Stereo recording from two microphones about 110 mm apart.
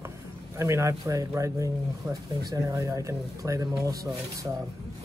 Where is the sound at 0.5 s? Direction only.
25° right (ahead or behind).